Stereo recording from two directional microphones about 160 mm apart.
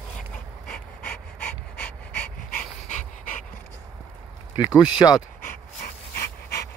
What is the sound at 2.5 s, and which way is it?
Dog, 50° left (ahead or behind).